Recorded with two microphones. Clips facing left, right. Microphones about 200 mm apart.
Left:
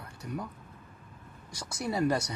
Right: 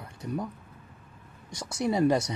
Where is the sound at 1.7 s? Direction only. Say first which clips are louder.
Right 5 dB; 25° right (ahead or behind).